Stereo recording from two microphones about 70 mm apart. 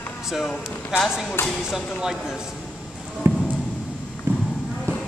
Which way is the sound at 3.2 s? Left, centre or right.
Right.